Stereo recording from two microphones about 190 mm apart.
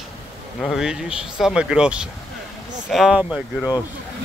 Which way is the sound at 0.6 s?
Centre (ahead or behind).